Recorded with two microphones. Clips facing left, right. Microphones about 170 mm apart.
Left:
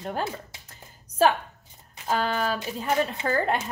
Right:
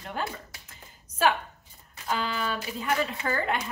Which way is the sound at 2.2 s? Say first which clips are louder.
Left 4 dB; 40° left (ahead or behind).